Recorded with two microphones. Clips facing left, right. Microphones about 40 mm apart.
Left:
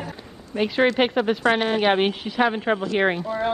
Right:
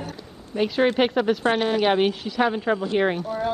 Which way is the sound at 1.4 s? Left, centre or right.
Left.